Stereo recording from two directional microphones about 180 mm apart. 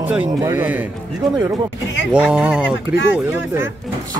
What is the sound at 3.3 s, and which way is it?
Speech, 10° right (ahead or behind).